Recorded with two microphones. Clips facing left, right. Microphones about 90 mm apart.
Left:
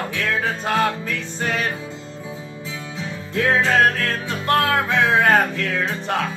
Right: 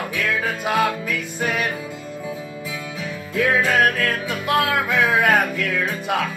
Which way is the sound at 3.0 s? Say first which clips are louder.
Right 1 dB; 25° left (ahead or behind).